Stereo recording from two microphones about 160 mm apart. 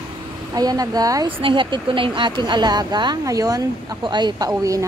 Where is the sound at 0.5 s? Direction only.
25° right (ahead or behind).